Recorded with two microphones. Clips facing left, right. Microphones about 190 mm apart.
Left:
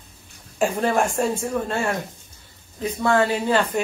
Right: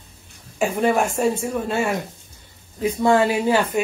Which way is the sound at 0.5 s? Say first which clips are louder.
Right 1 dB; centre (ahead or behind).